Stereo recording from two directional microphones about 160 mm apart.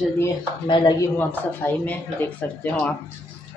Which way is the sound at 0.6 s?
30° left (ahead or behind).